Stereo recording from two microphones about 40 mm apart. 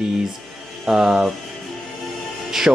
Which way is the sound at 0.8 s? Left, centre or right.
Centre.